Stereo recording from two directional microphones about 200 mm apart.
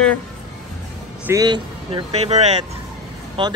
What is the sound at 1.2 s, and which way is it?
Speech, 20° right (ahead or behind).